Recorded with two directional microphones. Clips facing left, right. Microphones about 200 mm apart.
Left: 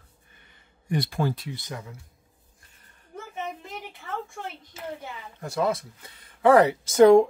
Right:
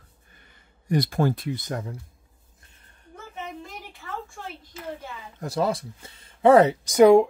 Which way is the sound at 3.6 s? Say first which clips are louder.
Left 1 dB; 20° left (ahead or behind).